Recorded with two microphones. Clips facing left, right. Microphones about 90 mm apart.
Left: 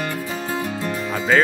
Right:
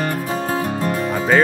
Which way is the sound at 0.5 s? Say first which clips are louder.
Right 3 dB; 40° right (ahead or behind).